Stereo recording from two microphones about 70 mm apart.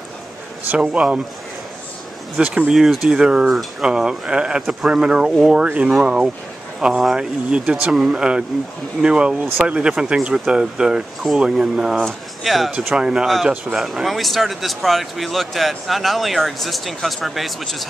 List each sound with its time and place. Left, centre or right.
0.7 s speech: centre
2.4 s speech: centre
2.7 s speech: centre
6.8 s speech: centre
12.9 s speech: centre